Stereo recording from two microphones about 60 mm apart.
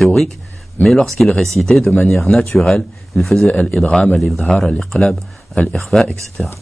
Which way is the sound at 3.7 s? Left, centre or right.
Left.